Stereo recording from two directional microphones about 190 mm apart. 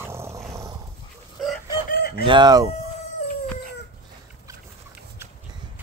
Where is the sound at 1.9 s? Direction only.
55° left (ahead or behind).